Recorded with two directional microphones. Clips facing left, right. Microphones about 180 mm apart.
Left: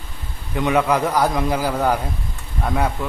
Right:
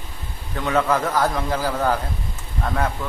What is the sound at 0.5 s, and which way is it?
A man's voice, 15° left (ahead or behind).